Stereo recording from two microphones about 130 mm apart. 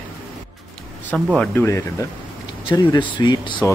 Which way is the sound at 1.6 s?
20° left (ahead or behind).